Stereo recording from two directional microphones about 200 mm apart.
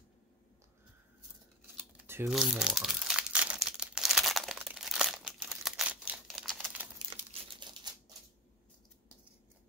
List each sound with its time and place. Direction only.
1.8 s crumpling: 10° right (ahead or behind)
7.6 s typewriter: 25° right (ahead or behind)